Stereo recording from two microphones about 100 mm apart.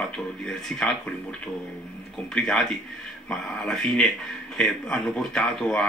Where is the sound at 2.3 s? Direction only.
5° left (ahead or behind).